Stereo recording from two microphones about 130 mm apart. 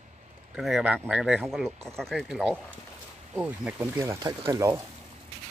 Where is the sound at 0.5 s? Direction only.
Centre (ahead or behind).